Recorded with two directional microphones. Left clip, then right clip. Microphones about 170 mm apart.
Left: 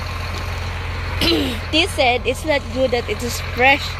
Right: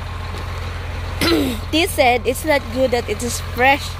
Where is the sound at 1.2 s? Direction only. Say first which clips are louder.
Right 1 dB; 35° right (ahead or behind); by 3.8 s 20° right (ahead or behind).